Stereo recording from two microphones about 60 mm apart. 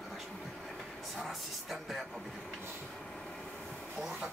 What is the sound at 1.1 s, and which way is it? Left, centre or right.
Speech, centre.